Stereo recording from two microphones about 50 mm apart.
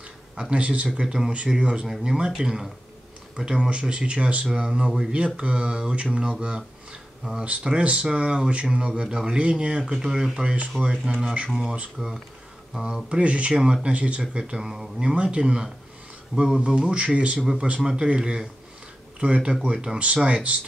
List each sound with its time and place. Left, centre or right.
0.4 s speech: right
12.0 s speech: centre
13.1 s speech: right; by 16.6 s centre
16.6 s speech: right